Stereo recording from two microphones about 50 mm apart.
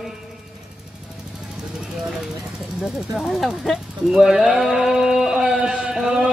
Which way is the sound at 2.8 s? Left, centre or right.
Centre.